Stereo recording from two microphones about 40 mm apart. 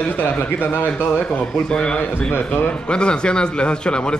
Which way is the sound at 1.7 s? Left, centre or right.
Left.